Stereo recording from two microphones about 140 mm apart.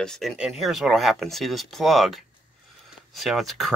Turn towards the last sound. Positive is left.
turn(degrees=0)  # may be behind; listen again after turning